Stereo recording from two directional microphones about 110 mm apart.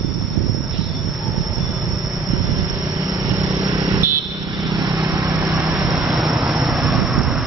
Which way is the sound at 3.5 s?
30° right (ahead or behind).